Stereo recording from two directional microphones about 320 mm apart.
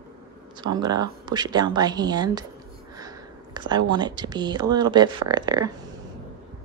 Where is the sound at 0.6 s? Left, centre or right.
Centre.